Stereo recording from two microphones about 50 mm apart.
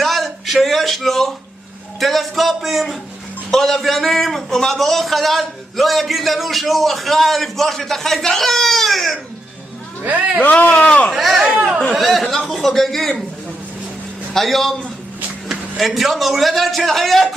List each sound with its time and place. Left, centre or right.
0.0 s a sound: centre
2.0 s a man's voice: centre
10.0 s a man's voice: right
10.4 s speech: left
11.1 s a man's voice: centre
14.3 s a man's voice: centre